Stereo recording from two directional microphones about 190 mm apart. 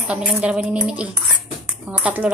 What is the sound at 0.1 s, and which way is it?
A woman's voice, 5° right (ahead or behind).